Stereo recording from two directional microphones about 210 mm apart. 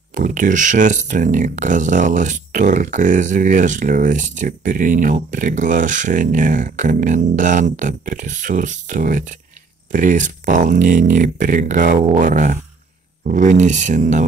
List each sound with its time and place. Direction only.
0.1 s speech: 40° right (ahead or behind)